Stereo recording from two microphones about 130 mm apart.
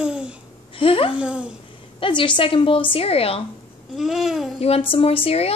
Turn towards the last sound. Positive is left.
turn(degrees=50)  # may be behind; listen again after turning